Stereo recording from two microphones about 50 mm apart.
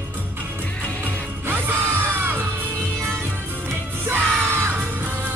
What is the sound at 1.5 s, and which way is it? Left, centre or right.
Music, right.